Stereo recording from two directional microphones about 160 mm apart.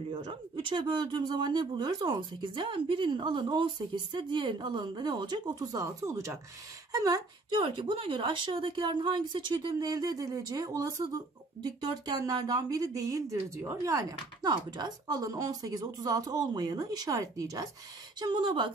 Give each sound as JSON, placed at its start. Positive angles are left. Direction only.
{"t": 0.1, "sound": "speech", "side_deg": -30}